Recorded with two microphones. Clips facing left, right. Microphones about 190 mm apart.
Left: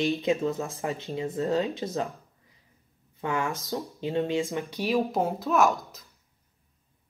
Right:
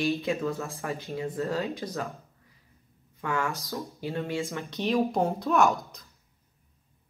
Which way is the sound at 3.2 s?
20° left (ahead or behind).